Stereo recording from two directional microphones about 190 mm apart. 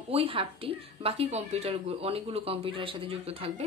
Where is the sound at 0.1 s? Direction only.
30° right (ahead or behind).